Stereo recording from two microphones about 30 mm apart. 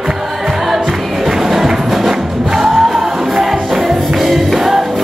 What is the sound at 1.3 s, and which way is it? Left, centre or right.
Music, centre.